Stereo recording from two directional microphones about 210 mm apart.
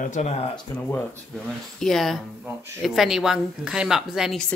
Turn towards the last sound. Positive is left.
turn(degrees=0)  # may be behind; listen again after turning